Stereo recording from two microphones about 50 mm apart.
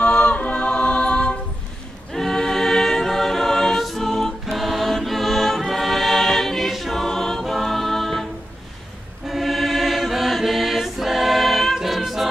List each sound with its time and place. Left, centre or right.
0.0 s a capella: left
2.1 s choir: centre
12.0 s music: centre